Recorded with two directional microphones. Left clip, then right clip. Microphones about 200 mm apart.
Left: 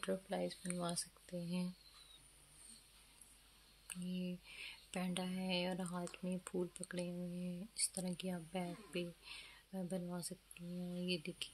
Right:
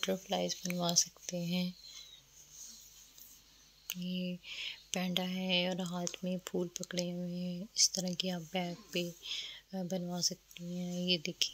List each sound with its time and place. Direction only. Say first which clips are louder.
0.0 s speech: right 7 dB; 30° right (ahead or behind)
3.8 s speech: right 7 dB; 30° right (ahead or behind)